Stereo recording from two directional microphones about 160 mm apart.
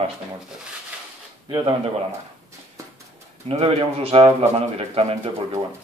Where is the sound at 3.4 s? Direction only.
40° right (ahead or behind).